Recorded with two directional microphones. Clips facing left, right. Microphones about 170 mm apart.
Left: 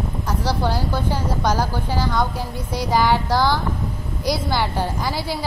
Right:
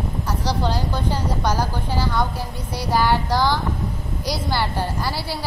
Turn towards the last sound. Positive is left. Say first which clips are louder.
# left 2 dB
turn(degrees=15)  # may be behind; listen again after turning